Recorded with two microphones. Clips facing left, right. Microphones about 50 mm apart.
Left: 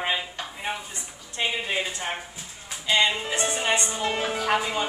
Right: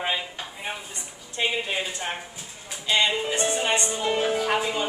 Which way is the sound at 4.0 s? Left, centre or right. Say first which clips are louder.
Right 2 dB; centre.